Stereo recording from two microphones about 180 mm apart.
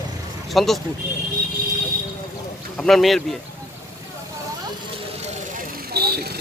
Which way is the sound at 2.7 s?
Centre (ahead or behind).